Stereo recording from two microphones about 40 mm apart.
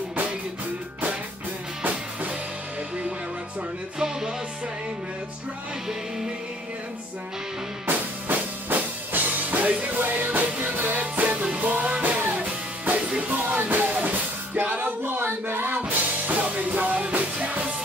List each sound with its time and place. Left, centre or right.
7.8 s music: right
15.4 s music: right
15.9 s music: right